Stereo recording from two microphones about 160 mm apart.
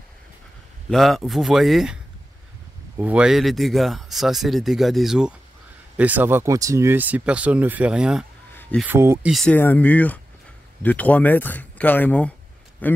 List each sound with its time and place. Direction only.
0.8 s speech: centre (ahead or behind)
3.0 s speech: 10° right (ahead or behind)
8.8 s speech: 15° right (ahead or behind)
9.3 s a man's voice: centre (ahead or behind)